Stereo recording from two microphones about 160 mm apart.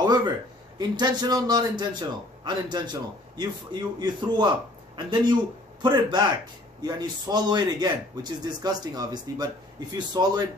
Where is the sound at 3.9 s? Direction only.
25° right (ahead or behind).